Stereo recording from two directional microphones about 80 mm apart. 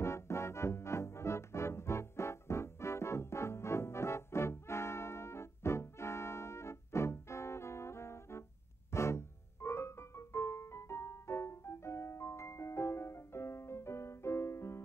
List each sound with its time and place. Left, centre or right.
0.0 s music: left
8.9 s piano: left